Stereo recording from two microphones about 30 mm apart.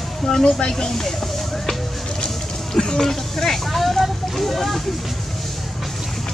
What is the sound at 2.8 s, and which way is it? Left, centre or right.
Speech, centre.